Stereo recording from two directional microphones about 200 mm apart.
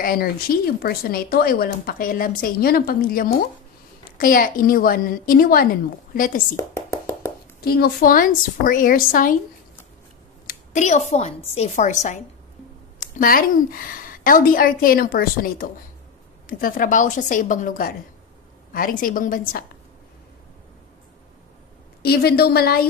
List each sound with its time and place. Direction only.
0.0 s speech: 45° left (ahead or behind)
6.5 s whispering: 15° left (ahead or behind)
7.6 s speech: 50° left (ahead or behind)
10.5 s a woman's voice: 40° left (ahead or behind)
22.0 s speech: 50° left (ahead or behind)